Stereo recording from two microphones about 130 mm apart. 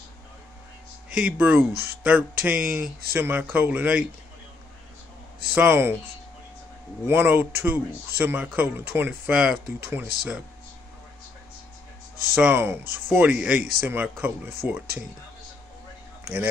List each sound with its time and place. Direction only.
1.1 s speech: 15° right (ahead or behind)
5.6 s speech: 15° right (ahead or behind)
7.1 s speech: 15° right (ahead or behind)
12.4 s speech: 15° right (ahead or behind)